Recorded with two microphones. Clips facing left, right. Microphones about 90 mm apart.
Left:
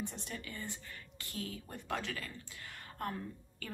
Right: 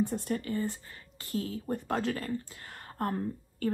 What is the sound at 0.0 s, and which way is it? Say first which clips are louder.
A woman's voice: right 12 dB; 50° right (ahead or behind).